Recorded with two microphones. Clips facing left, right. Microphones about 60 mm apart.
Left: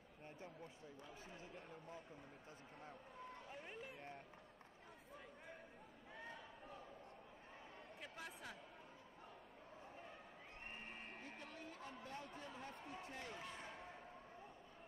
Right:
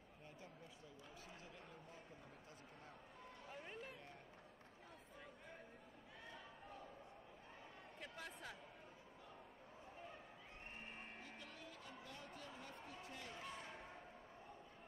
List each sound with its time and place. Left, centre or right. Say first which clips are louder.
1.4 s a man's voice: left 3 dB; left
3.6 s speech: right 2 dB; centre
8.0 s speech: right 1 dB; centre
11.2 s a sound: left 2 dB; left